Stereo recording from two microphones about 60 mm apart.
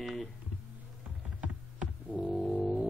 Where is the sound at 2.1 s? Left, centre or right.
Centre.